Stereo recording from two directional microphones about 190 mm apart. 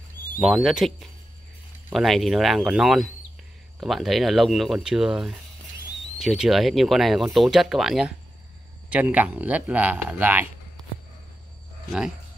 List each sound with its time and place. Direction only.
0.4 s speech: centre (ahead or behind)